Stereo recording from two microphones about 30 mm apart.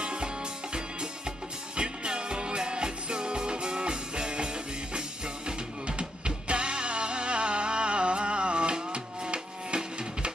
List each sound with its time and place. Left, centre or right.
0.0 s music: right